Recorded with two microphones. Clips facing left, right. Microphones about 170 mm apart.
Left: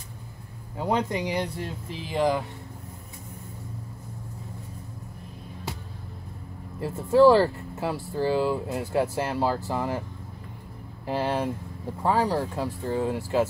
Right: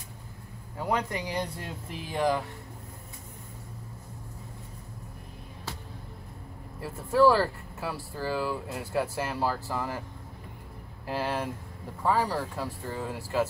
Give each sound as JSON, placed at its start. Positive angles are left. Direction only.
{"t": 0.7, "sound": "speech", "side_deg": 20}
{"t": 6.8, "sound": "speech", "side_deg": 25}
{"t": 11.1, "sound": "speech", "side_deg": 20}